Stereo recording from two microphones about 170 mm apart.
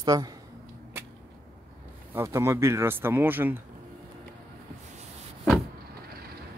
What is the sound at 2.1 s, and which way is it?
Speech, 15° right (ahead or behind).